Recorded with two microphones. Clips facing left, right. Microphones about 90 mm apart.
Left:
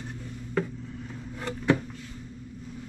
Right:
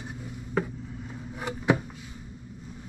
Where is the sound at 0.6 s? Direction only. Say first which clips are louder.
Even; 10° right (ahead or behind).